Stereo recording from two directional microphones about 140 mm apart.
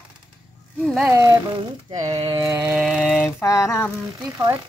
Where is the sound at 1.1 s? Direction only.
25° right (ahead or behind).